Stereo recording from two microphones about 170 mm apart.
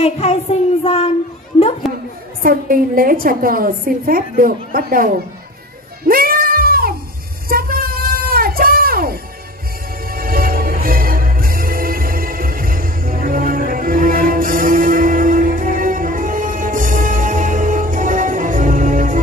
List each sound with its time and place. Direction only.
0.0 s child singing: 35° left (ahead or behind)
2.4 s a woman's voice: 55° right (ahead or behind)
6.0 s music: 55° right (ahead or behind)
7.4 s a sound: 60° right (ahead or behind)
10.0 s music: 60° right (ahead or behind)